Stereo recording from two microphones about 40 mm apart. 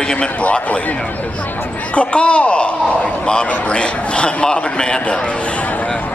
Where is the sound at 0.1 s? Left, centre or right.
Left.